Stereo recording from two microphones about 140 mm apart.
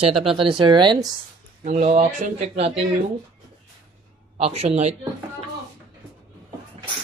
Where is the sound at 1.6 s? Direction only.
50° right (ahead or behind).